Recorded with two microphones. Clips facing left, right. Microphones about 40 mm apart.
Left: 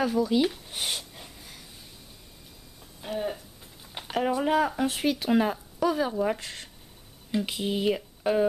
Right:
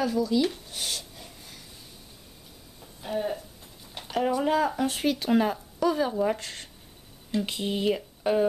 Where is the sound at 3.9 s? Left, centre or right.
Centre.